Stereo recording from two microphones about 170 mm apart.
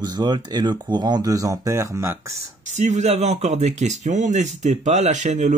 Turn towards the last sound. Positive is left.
turn(degrees=-45)  # may be behind; listen again after turning